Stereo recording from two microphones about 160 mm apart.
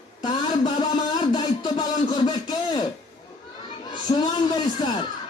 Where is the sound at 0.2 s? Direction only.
30° left (ahead or behind).